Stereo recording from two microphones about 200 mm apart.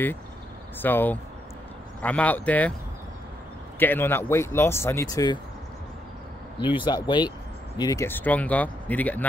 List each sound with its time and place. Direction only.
0.7 s speech: 10° left (ahead or behind)
3.8 s speech: 10° left (ahead or behind)
6.6 s speech: 25° left (ahead or behind); by 9.3 s 10° left (ahead or behind)